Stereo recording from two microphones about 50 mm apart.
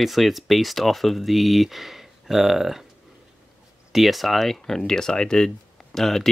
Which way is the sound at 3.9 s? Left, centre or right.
Centre.